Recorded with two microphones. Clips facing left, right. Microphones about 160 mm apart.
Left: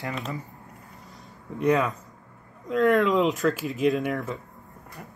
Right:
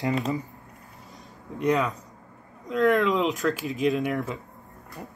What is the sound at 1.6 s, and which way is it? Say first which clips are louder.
Speech: left 1 dB; 5° left (ahead or behind).